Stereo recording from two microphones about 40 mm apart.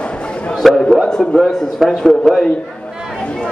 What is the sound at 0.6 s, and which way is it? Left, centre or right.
Speech, centre.